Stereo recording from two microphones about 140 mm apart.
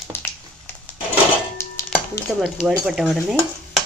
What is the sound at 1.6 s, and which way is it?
Chopping, 20° left (ahead or behind).